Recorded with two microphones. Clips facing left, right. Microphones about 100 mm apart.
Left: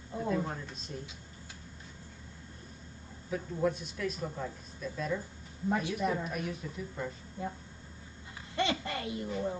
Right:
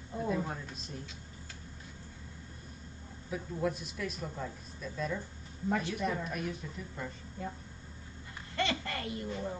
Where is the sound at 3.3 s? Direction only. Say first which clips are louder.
Left 3 dB; centre (ahead or behind).